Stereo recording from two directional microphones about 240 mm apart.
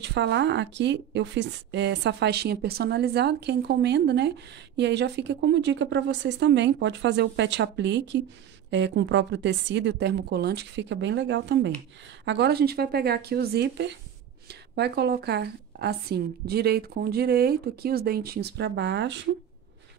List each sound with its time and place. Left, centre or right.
0.0 s a woman's voice: right